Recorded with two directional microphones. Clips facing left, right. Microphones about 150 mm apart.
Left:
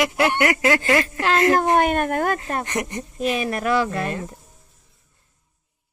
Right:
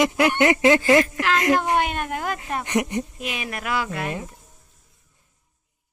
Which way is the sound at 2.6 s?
15° right (ahead or behind).